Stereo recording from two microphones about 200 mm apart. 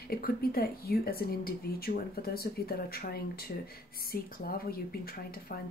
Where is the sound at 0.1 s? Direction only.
50° left (ahead or behind).